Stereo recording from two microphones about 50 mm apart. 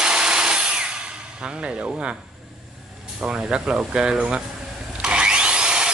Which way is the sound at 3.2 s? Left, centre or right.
Right.